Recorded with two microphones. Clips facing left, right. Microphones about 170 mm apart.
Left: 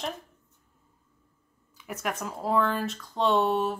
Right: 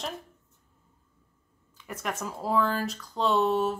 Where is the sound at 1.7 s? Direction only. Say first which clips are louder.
Left 2 dB; 10° left (ahead or behind).